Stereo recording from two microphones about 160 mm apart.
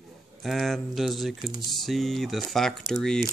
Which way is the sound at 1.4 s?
30° right (ahead or behind).